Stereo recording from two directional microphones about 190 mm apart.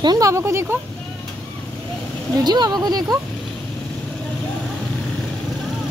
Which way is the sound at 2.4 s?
20° right (ahead or behind).